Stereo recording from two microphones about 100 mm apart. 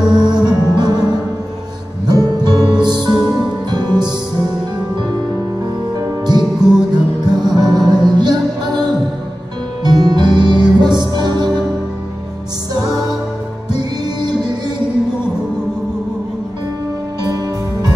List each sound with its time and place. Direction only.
0.1 s music: 45° right (ahead or behind)
5.9 s music: 45° right (ahead or behind)
6.6 s music: 5° right (ahead or behind)
6.9 s music: 45° right (ahead or behind)
13.7 s music: 45° right (ahead or behind)